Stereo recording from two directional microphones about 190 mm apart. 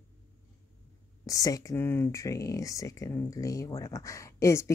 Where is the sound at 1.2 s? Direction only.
20° left (ahead or behind).